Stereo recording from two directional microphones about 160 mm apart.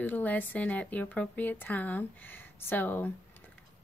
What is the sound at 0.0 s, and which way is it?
A woman's voice, 10° left (ahead or behind).